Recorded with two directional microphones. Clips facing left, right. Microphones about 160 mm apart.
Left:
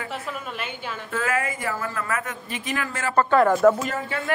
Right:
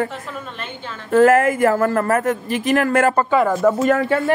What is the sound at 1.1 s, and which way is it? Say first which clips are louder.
Speech: right 14 dB; 45° right (ahead or behind).